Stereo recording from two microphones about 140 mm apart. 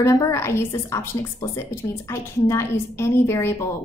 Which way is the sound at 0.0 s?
20° left (ahead or behind).